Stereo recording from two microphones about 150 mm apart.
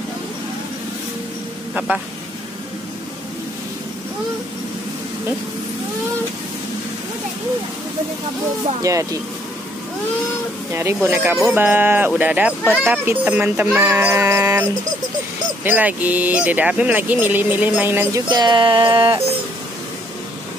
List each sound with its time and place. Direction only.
8.9 s speech: 20° right (ahead or behind)
10.7 s speech: 15° right (ahead or behind)
18.3 s music: 30° right (ahead or behind)